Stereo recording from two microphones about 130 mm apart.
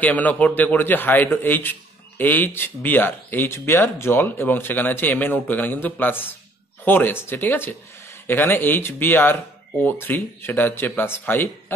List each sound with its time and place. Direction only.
0.0 s a man's voice: 10° left (ahead or behind)